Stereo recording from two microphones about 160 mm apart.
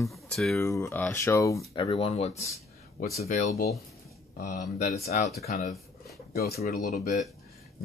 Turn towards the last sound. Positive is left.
turn(degrees=45)  # may be behind; listen again after turning